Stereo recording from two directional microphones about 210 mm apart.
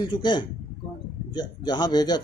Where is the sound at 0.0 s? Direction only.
20° left (ahead or behind).